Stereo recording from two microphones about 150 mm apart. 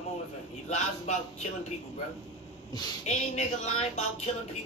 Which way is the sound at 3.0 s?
50° left (ahead or behind).